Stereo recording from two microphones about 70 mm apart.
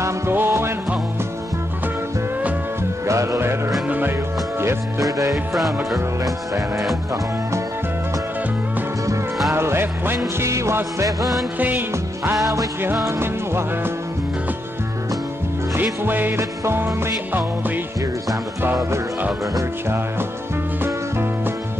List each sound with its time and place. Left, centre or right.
0.3 s music: right
3.1 s music: right
5.0 s music: right
5.3 s music: centre
9.5 s music: right
11.1 s music: centre
15.7 s music: right